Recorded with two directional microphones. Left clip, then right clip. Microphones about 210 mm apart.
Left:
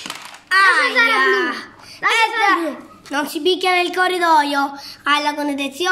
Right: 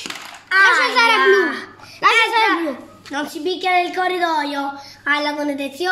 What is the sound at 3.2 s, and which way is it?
A woman's voice, 40° left (ahead or behind).